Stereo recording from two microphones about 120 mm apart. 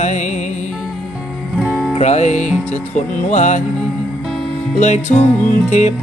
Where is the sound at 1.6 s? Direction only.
Centre (ahead or behind).